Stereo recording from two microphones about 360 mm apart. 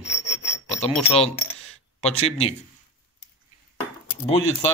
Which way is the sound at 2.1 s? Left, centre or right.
Centre.